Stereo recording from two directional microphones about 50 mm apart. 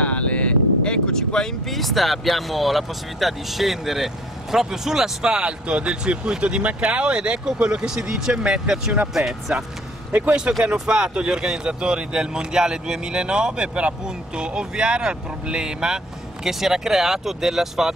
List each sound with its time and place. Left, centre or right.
0.0 s a sound: left
1.7 s speech: centre
10.6 s speech: right; by 17.9 s centre